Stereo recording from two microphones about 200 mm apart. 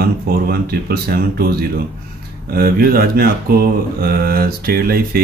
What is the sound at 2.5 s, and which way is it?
Speech, 50° right (ahead or behind).